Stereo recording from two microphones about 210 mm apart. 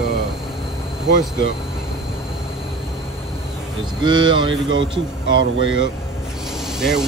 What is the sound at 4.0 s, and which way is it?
Speech, 20° right (ahead or behind).